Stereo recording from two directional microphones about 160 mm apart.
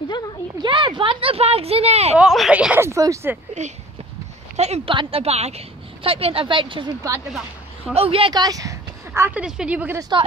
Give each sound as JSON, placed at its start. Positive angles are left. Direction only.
{"t": 0.6, "sound": "a sound", "side_deg": -30}
{"t": 2.1, "sound": "speech", "side_deg": 0}
{"t": 3.6, "sound": "speech", "side_deg": -45}
{"t": 4.6, "sound": "a sound", "side_deg": -40}
{"t": 4.9, "sound": "speech", "side_deg": -40}
{"t": 7.9, "sound": "speech", "side_deg": -35}
{"t": 9.9, "sound": "a woman's voice", "side_deg": -25}